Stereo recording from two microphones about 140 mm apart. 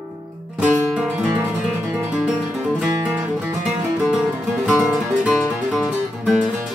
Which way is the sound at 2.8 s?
5° right (ahead or behind).